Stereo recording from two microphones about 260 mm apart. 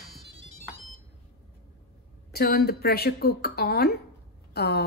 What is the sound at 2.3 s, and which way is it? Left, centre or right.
A woman's voice, left.